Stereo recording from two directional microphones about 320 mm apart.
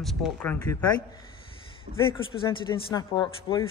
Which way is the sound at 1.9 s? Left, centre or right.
Right.